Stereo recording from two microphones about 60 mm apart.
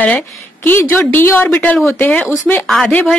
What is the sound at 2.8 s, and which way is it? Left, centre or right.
Speech, left.